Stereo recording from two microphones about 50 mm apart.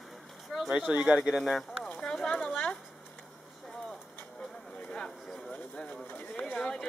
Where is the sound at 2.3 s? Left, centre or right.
Left.